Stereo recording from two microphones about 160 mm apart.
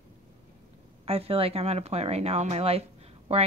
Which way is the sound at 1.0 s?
35° right (ahead or behind).